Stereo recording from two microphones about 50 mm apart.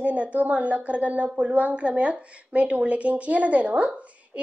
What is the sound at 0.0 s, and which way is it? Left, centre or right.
A woman's voice, right.